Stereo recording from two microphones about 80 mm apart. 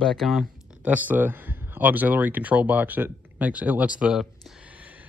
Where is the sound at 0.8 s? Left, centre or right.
Centre.